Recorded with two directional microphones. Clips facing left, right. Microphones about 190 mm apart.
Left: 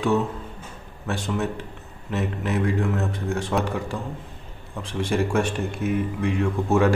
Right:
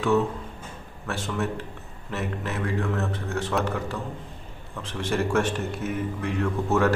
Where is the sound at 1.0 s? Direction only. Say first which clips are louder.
Left 2 dB; 15° left (ahead or behind).